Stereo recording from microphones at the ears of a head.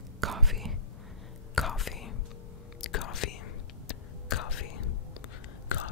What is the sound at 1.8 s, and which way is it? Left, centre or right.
Whispering, left.